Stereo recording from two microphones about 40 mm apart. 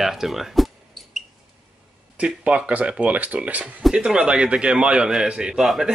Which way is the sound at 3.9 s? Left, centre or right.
Right.